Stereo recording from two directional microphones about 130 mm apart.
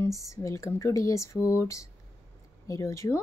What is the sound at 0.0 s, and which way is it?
Speech, 20° left (ahead or behind).